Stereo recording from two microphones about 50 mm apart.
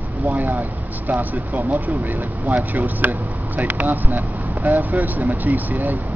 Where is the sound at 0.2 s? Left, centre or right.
Right.